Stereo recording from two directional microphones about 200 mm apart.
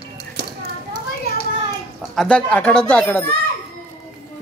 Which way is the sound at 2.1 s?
5° left (ahead or behind).